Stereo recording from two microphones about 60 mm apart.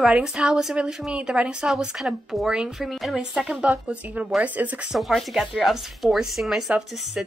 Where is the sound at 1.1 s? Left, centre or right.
Centre.